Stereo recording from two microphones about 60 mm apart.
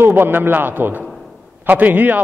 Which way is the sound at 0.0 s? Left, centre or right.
Right.